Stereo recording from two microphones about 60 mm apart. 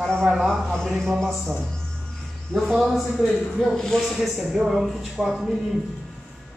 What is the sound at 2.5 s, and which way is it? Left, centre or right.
A man's voice, centre.